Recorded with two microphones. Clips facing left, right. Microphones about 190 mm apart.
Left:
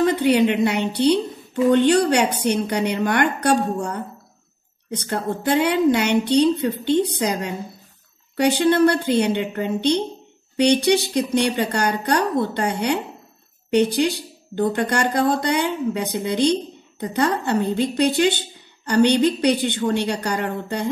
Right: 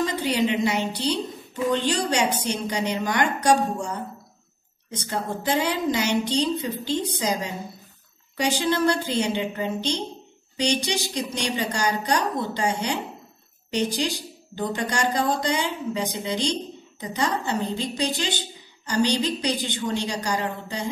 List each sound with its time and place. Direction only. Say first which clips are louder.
0.0 s a woman's voice: left 7 dB; 60° left (ahead or behind)